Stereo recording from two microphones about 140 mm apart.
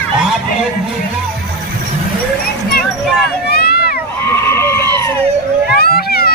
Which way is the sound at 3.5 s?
90° left.